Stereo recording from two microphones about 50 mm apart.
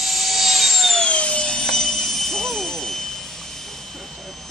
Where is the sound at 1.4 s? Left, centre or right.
Centre.